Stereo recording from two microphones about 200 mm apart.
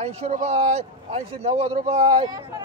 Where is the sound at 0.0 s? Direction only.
30° right (ahead or behind).